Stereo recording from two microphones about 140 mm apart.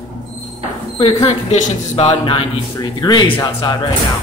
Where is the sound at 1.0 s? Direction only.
35° left (ahead or behind).